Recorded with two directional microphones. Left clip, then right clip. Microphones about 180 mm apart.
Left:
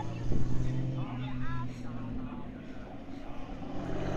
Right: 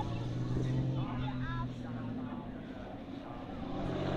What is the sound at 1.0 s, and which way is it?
Vehicle, 50° right (ahead or behind).